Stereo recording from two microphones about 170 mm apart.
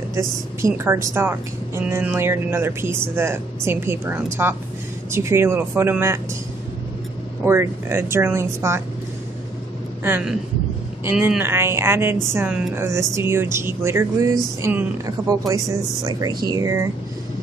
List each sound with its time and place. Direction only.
0.1 s a woman's voice: 15° right (ahead or behind)
7.4 s a woman's voice: 15° right (ahead or behind)
11.1 s a woman's voice: 10° right (ahead or behind)